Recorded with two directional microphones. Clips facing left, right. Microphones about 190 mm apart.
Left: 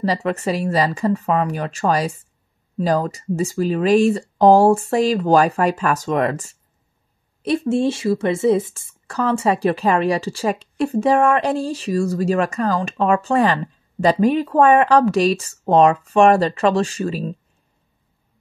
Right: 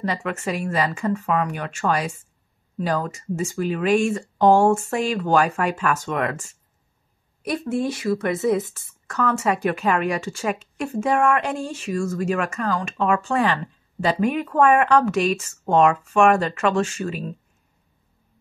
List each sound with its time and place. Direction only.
0.0 s speech: 35° left (ahead or behind)